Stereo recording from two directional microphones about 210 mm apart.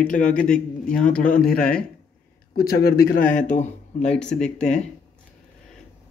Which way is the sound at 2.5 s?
45° left (ahead or behind).